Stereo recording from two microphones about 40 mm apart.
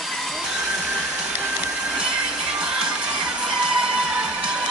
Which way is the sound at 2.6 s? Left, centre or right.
Right.